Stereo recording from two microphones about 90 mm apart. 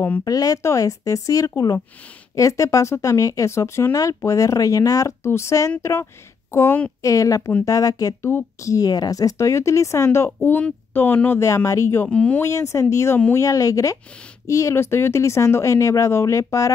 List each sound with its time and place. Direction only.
0.2 s speech: 45° left (ahead or behind); by 11.4 s 25° left (ahead or behind)
11.4 s speech: 35° left (ahead or behind)
12.1 s speech: 15° left (ahead or behind)
12.4 s speech: 35° left (ahead or behind)